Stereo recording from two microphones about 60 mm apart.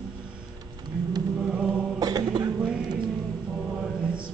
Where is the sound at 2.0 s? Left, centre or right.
Right.